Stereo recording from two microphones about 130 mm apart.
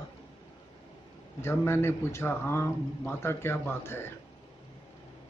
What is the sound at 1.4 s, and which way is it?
Speech, 20° left (ahead or behind).